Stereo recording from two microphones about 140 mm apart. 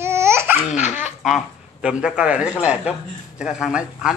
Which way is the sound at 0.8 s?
55° left (ahead or behind).